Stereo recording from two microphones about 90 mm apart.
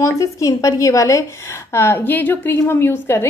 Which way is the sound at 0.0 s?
40° left (ahead or behind).